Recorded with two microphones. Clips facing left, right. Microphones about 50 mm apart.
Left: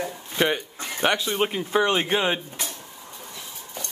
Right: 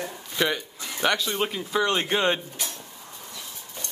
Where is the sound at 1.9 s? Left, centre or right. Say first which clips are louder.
Left 1 dB; centre.